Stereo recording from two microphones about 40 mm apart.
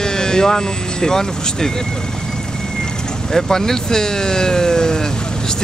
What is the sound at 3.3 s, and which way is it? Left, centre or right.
Speech, centre.